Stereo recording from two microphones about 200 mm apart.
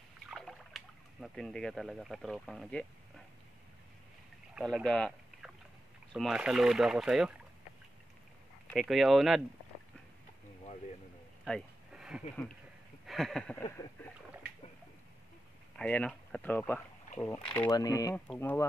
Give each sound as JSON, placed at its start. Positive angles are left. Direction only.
{"t": 0.3, "sound": "speech", "side_deg": 0}
{"t": 4.6, "sound": "speech", "side_deg": 0}
{"t": 8.7, "sound": "speech", "side_deg": 0}
{"t": 11.4, "sound": "a sound", "side_deg": 0}
{"t": 15.8, "sound": "speech", "side_deg": 5}